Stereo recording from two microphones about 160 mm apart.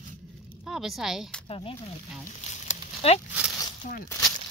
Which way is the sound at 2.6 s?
40° left (ahead or behind).